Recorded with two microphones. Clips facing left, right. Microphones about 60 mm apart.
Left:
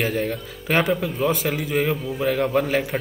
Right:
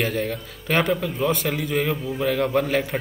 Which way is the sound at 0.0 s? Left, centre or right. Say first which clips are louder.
Left 1 dB; centre.